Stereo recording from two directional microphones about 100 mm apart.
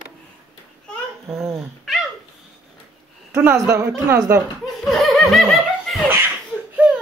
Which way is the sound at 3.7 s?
30° right (ahead or behind).